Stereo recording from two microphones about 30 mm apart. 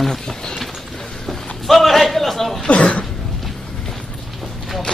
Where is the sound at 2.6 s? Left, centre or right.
Left.